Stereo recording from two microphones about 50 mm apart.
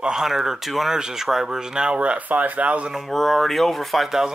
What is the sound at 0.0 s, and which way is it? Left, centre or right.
Speech, centre.